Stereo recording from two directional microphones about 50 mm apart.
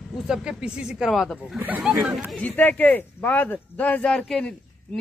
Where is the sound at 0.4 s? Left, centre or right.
Right.